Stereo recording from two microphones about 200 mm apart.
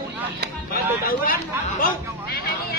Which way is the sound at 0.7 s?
50° left (ahead or behind).